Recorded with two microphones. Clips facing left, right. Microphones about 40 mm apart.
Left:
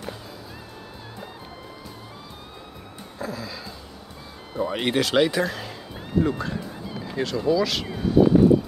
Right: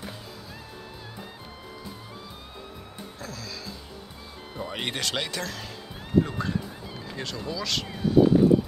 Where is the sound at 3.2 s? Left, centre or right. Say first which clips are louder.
Left 8 dB; centre.